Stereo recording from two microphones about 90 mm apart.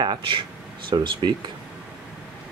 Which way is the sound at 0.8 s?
60° right (ahead or behind).